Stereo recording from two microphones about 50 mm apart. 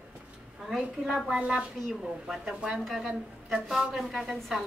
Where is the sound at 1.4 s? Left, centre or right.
Centre.